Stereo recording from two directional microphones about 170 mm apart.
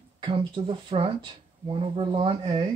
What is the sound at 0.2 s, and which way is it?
Speech, 30° right (ahead or behind).